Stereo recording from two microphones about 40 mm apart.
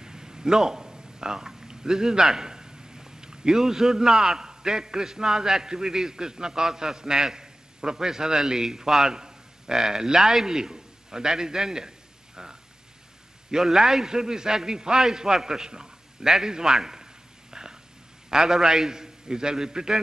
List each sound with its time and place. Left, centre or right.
0.0 s a man's voice: centre
12.4 s a sound: centre
13.5 s a man's voice: centre